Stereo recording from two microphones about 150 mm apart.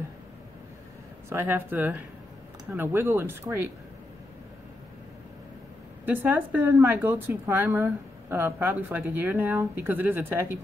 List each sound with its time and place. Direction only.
1.3 s speech: 15° right (ahead or behind)
6.0 s speech: 15° right (ahead or behind)